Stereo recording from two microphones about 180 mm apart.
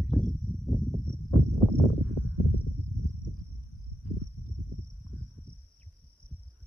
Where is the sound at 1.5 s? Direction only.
10° left (ahead or behind).